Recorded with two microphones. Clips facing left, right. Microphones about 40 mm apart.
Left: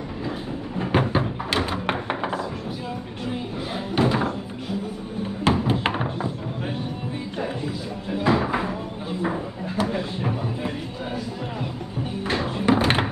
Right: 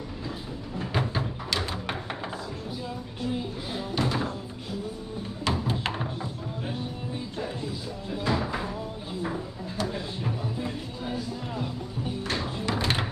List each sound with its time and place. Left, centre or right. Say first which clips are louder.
0.7 s a sound: left 7 dB; left
3.9 s door: left 7 dB; left
5.4 s music: left 7 dB; left
7.3 s a sound: left 7 dB; left
9.2 s music: left 6 dB; left
12.3 s music: left 10 dB; left